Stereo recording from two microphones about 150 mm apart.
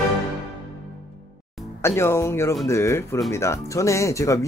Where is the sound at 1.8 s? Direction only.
15° left (ahead or behind).